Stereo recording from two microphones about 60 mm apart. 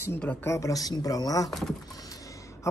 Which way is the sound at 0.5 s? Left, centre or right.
Left.